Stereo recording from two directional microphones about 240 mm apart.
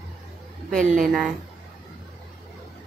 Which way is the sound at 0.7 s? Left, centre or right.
Right.